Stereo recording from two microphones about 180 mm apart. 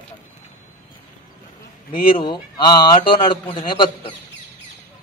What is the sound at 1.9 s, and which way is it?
A man's voice, 30° left (ahead or behind).